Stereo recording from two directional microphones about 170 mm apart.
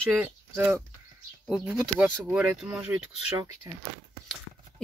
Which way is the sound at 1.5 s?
5° right (ahead or behind).